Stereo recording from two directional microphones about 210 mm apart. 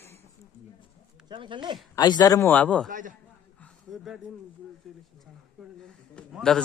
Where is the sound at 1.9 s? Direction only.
20° left (ahead or behind).